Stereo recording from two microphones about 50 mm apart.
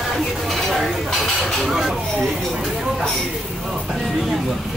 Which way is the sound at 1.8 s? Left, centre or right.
Centre.